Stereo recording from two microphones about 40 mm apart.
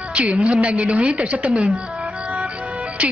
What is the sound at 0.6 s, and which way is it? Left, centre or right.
Speech, right.